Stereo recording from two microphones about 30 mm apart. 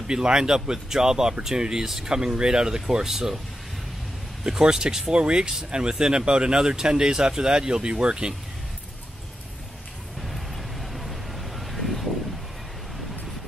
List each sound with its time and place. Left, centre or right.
0.0 s speech: right
4.5 s speech: right
10.2 s vehicle: centre